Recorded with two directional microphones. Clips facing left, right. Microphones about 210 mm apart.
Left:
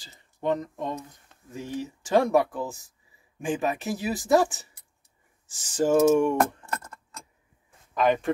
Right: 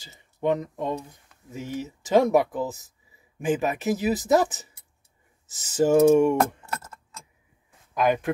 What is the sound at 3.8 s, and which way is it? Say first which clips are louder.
Speech: right 4 dB; 20° right (ahead or behind).